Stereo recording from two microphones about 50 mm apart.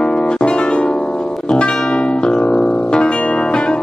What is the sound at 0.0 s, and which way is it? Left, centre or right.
Music, centre.